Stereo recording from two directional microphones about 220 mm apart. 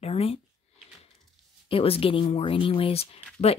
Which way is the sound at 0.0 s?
25° left (ahead or behind).